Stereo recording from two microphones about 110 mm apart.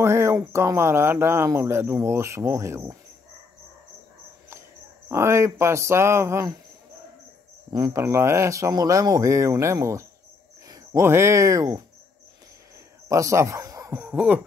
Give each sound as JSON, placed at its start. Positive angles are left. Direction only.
{"t": 0.0, "sound": "speech", "side_deg": -25}
{"t": 4.5, "sound": "speech", "side_deg": -25}
{"t": 7.7, "sound": "speech", "side_deg": -30}
{"t": 13.1, "sound": "speech", "side_deg": -30}
{"t": 14.1, "sound": "a sound", "side_deg": -10}